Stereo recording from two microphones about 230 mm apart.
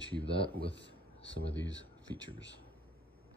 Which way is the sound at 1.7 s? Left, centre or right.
Left.